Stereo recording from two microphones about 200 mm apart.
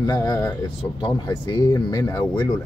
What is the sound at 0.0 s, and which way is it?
Speech, 20° left (ahead or behind).